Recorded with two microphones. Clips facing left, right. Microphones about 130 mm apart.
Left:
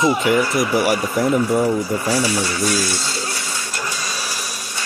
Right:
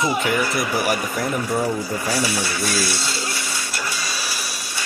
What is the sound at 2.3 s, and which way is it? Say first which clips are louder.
Speech: left 3 dB; 40° left (ahead or behind).